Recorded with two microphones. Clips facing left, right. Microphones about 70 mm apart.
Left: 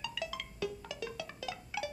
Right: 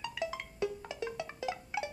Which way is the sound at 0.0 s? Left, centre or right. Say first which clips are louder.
Right 3 dB; right.